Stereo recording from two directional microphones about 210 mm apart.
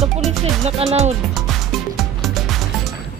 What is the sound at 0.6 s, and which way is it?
Speech, 30° right (ahead or behind).